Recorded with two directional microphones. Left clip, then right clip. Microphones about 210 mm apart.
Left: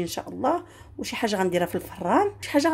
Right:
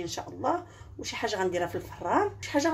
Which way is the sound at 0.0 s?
50° left (ahead or behind).